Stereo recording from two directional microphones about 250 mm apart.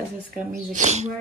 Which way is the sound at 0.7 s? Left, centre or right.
Right.